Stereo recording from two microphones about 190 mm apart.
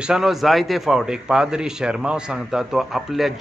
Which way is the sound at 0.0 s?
5° right (ahead or behind).